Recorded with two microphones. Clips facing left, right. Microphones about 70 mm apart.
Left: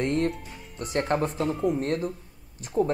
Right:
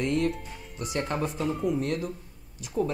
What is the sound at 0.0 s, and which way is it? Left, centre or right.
Speech, left.